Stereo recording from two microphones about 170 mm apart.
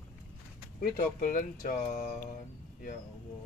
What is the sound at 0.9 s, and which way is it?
Speech, 50° left (ahead or behind).